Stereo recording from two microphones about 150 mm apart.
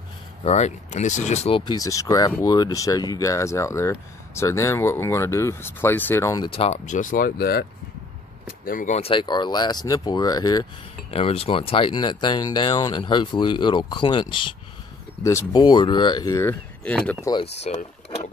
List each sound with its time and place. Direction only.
0.4 s speech: 45° left (ahead or behind)
1.6 s speech: 25° left (ahead or behind)
6.5 s speech: 45° left (ahead or behind); by 7.6 s 90° left
8.6 s speech: 60° left (ahead or behind); by 10.7 s 25° left (ahead or behind)
11.1 s speech: 40° left (ahead or behind)
15.2 s speech: 25° left (ahead or behind)
16.8 s speech: 10° left (ahead or behind)
17.2 s speech: 30° left (ahead or behind)
17.6 s speech: 40° left (ahead or behind)